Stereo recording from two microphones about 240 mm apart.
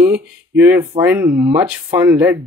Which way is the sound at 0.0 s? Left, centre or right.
Centre.